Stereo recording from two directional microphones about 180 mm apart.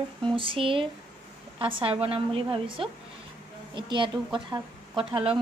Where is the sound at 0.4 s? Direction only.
30° right (ahead or behind).